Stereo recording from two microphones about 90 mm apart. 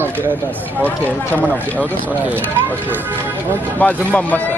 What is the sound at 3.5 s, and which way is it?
Speech, 15° left (ahead or behind).